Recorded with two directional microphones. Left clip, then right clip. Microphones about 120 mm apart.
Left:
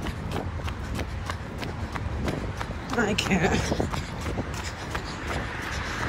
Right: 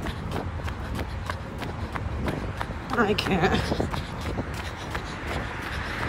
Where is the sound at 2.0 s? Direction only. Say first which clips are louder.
Even; centre (ahead or behind).